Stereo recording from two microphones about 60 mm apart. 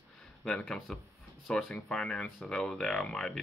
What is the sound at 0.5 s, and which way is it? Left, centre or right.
Speech, centre.